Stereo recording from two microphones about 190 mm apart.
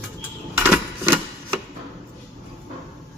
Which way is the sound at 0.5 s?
5° right (ahead or behind).